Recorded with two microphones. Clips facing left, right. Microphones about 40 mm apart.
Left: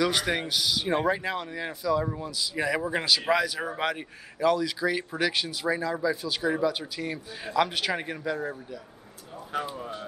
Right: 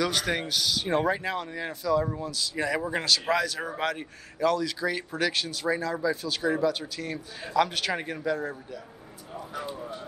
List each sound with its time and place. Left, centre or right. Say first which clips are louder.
0.0 s speech: left 1 dB; centre
9.5 s speech: left 6 dB; left